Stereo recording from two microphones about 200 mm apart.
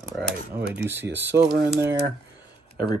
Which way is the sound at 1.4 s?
50° right (ahead or behind).